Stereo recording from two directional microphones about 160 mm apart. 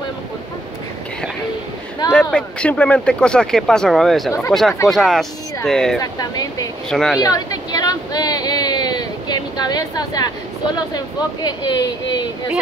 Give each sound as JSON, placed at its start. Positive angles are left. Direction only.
{"t": 2.1, "sound": "speech", "side_deg": 5}
{"t": 5.9, "sound": "speech", "side_deg": 25}
{"t": 6.9, "sound": "speech", "side_deg": 5}
{"t": 7.2, "sound": "a sound", "side_deg": 25}
{"t": 11.4, "sound": "speech", "side_deg": 25}